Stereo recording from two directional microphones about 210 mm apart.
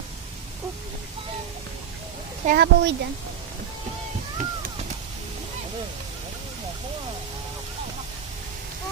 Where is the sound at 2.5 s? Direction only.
50° right (ahead or behind).